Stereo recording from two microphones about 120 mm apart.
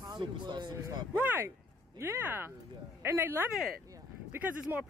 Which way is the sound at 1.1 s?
15° right (ahead or behind).